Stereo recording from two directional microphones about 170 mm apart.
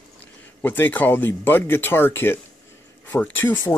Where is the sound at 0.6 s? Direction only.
10° left (ahead or behind).